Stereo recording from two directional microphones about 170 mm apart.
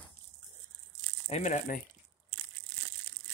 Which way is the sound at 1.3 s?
45° left (ahead or behind).